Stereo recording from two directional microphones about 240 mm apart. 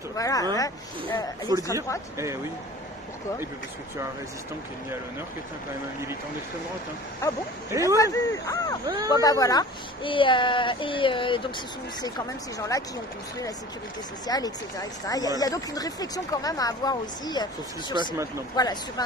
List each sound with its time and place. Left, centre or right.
0.2 s speech: centre
7.7 s speech: centre
8.0 s speech: centre
8.8 s speech: centre
9.1 s speech: centre
12.5 s speech: centre
14.2 s speech: centre